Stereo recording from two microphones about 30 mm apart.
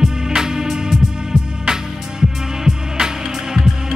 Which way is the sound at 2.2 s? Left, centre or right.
Centre.